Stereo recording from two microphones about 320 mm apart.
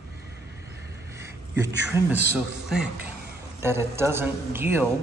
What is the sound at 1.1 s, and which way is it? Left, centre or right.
A man's voice, centre.